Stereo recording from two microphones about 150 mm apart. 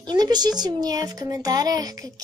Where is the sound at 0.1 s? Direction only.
25° right (ahead or behind).